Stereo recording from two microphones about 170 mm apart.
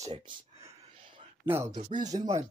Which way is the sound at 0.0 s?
20° right (ahead or behind).